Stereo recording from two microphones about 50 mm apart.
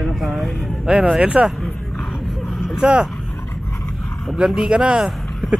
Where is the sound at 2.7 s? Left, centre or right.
Centre.